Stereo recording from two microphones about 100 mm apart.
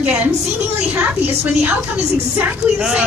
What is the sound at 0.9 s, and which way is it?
Speech, 20° right (ahead or behind).